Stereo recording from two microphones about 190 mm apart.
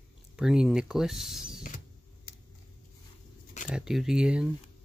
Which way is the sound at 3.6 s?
5° right (ahead or behind).